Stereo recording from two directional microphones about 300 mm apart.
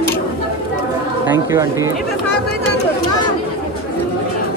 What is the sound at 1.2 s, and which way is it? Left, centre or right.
Speech, centre.